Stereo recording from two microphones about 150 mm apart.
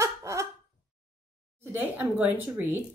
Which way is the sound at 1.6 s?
10° right (ahead or behind).